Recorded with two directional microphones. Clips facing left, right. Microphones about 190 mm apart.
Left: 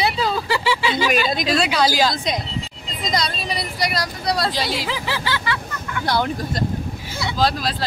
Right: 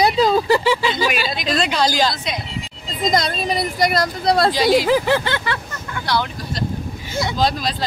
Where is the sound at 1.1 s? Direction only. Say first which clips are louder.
Left 3 dB; 45° left (ahead or behind).